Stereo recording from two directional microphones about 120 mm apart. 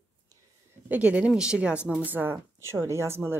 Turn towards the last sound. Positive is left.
turn(degrees=-20)  # may be behind; listen again after turning